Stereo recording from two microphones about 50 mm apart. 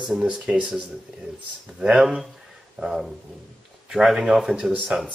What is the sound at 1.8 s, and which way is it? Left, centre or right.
Speech, centre.